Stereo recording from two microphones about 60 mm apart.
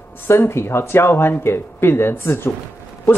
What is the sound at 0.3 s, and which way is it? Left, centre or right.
Speech, left.